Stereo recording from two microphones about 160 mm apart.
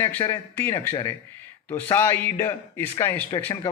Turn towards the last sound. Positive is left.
turn(degrees=15)  # may be behind; listen again after turning